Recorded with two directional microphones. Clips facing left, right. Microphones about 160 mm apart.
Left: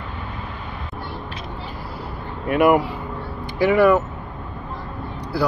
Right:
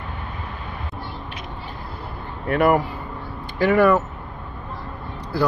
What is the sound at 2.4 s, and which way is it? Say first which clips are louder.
Speech: left 2 dB; 15° left (ahead or behind).